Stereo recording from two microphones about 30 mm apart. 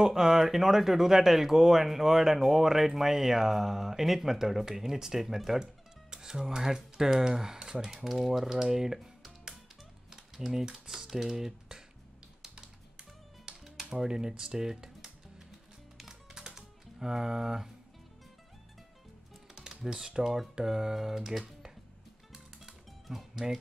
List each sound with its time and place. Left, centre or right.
0.0 s speech: centre
5.6 s music: right
6.3 s speech: centre
7.8 s speech: centre
10.3 s speech: centre
13.5 s music: right
13.8 s speech: right
16.1 s music: right
19.5 s typing: right
20.2 s speech: centre
23.1 s speech: centre